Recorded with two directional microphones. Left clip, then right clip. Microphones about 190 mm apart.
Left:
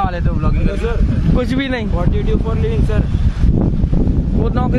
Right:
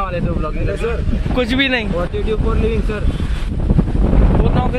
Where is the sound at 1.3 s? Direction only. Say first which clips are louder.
Right 4 dB; 15° left (ahead or behind).